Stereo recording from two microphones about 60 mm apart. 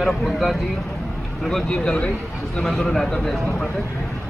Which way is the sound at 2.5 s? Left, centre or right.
Centre.